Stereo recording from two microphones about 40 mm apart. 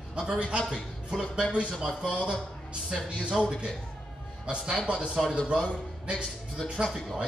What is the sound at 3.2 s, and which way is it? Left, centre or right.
A man's voice, right.